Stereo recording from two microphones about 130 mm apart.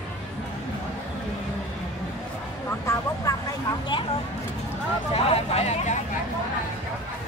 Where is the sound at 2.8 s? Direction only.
25° left (ahead or behind).